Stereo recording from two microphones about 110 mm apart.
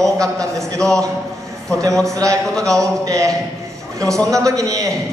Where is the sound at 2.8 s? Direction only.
30° right (ahead or behind).